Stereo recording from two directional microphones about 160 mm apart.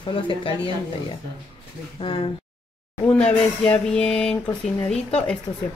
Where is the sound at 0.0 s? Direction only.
30° left (ahead or behind).